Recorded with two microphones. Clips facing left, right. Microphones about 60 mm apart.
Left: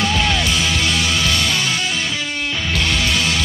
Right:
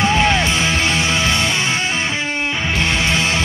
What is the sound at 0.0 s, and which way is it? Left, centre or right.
Music, right.